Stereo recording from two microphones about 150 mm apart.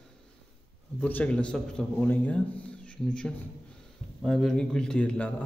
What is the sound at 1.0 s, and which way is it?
A man's voice, 10° left (ahead or behind).